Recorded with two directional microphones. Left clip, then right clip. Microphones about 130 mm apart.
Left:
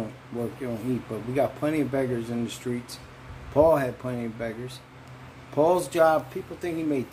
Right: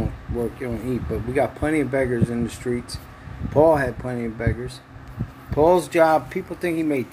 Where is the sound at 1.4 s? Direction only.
25° right (ahead or behind).